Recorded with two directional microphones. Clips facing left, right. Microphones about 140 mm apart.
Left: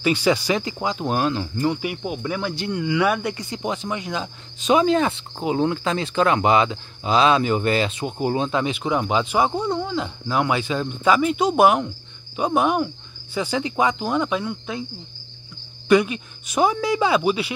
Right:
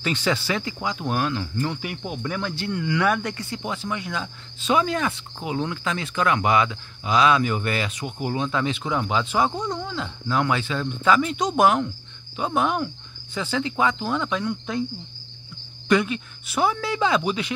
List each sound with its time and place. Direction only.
0.0 s speech: 10° left (ahead or behind)
1.7 s speech: 10° left (ahead or behind)
12.4 s cricket: 15° left (ahead or behind)
15.9 s cricket: 15° left (ahead or behind)